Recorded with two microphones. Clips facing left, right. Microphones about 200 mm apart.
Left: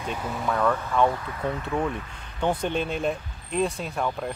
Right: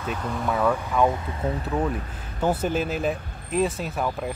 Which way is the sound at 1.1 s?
25° right (ahead or behind).